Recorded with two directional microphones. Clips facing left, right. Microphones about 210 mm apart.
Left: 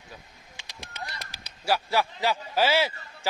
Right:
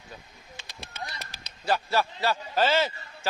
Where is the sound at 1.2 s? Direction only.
10° left (ahead or behind).